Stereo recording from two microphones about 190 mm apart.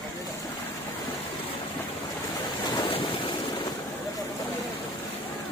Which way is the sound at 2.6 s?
25° left (ahead or behind).